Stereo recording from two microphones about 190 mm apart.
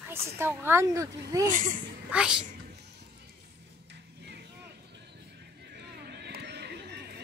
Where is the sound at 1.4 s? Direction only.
45° right (ahead or behind).